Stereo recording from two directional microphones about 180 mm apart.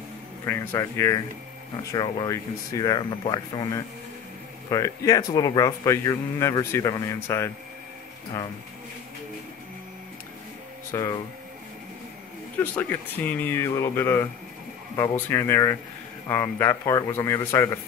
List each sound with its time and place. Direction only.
0.5 s speech: 15° left (ahead or behind)
10.9 s speech: 20° left (ahead or behind)
12.7 s speech: 10° left (ahead or behind)